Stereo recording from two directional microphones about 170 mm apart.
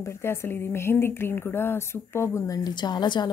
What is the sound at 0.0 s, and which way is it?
Speech, 15° left (ahead or behind).